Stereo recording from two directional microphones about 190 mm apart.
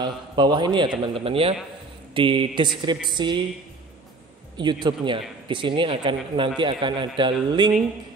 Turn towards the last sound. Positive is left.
turn(degrees=-25)  # may be behind; listen again after turning